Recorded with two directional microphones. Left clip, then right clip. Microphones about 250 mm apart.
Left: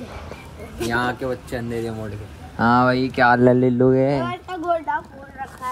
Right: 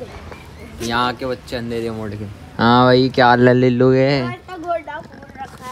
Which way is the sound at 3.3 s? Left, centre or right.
Left.